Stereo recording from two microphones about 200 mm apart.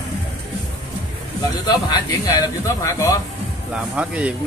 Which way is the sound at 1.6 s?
20° left (ahead or behind).